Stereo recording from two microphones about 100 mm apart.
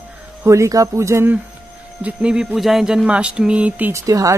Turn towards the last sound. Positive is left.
turn(degrees=-35)  # may be behind; listen again after turning